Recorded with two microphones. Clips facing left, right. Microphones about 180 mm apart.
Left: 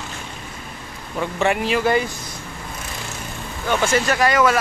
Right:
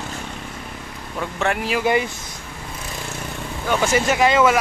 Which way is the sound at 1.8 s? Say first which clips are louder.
Right 2 dB; 15° right (ahead or behind).